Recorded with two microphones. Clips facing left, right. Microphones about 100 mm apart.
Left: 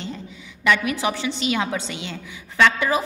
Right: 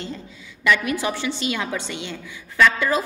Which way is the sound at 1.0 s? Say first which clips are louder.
Left 1 dB; 20° left (ahead or behind).